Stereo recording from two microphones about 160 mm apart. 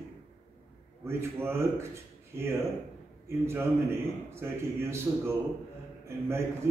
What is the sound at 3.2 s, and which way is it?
A man's voice, 15° right (ahead or behind).